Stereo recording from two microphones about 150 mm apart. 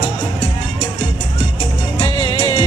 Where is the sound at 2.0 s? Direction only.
25° left (ahead or behind).